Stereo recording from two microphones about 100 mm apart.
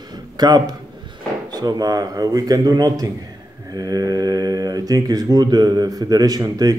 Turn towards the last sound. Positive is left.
turn(degrees=-40)  # may be behind; listen again after turning